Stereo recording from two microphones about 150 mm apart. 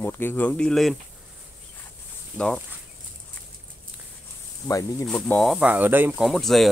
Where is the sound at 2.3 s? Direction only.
15° right (ahead or behind).